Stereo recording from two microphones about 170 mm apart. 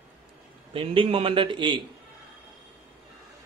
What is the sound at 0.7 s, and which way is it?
A man's voice, 30° right (ahead or behind).